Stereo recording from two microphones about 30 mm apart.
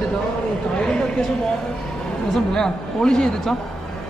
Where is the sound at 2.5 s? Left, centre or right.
Left.